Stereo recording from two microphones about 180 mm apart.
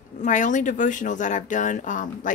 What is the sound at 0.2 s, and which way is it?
A woman's voice, 45° left (ahead or behind).